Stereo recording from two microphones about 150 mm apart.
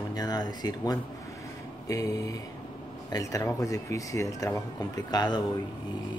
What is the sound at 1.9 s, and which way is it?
Speech, 20° left (ahead or behind).